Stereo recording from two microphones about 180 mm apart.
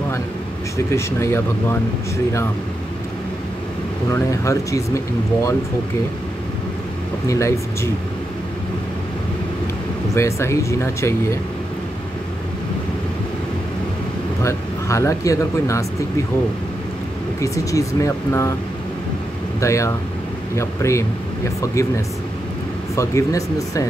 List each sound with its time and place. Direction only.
0.9 s speech: 15° left (ahead or behind)
4.1 s speech: 15° left (ahead or behind)
7.2 s speech: 15° left (ahead or behind)
10.1 s speech: 15° left (ahead or behind)
14.4 s speech: 15° left (ahead or behind)
17.4 s speech: 15° left (ahead or behind)
19.6 s speech: 15° left (ahead or behind)
22.9 s speech: 15° left (ahead or behind)